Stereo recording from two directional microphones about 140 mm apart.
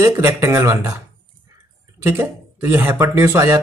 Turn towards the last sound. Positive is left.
turn(degrees=-20)  # may be behind; listen again after turning